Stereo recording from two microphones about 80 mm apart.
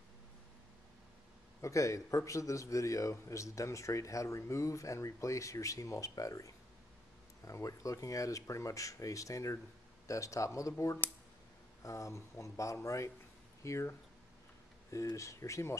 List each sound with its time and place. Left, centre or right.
1.6 s a man's voice: left
11.8 s a man's voice: left